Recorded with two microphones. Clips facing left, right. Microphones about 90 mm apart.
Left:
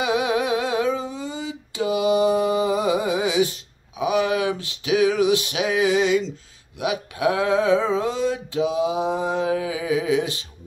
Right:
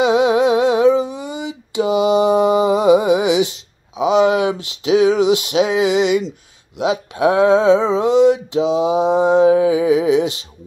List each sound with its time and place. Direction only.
0.0 s humming: 25° right (ahead or behind)
3.9 s a sound: 25° right (ahead or behind)
4.6 s mantra: 25° right (ahead or behind)